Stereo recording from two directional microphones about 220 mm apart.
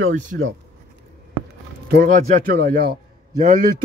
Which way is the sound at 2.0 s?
40° right (ahead or behind).